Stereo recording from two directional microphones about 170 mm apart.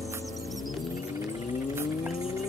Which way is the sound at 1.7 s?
15° right (ahead or behind).